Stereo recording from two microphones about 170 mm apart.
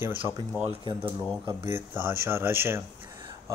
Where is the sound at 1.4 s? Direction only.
15° right (ahead or behind).